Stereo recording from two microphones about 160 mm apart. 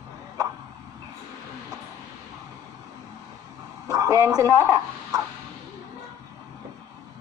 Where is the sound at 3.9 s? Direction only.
20° right (ahead or behind).